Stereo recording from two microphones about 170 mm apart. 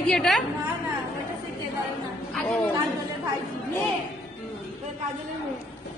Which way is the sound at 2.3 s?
5° left (ahead or behind).